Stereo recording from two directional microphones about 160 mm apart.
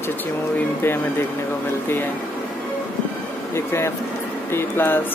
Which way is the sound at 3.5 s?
15° left (ahead or behind).